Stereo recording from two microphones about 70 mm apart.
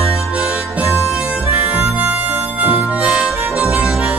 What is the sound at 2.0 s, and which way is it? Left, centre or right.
Music, right.